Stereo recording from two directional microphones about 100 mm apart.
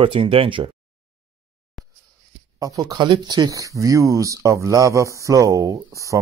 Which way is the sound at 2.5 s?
35° right (ahead or behind).